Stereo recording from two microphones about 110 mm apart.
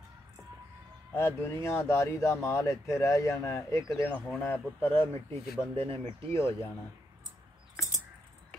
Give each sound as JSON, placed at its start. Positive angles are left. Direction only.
{"t": 1.1, "sound": "speech", "side_deg": 25}
{"t": 4.1, "sound": "speech", "side_deg": 15}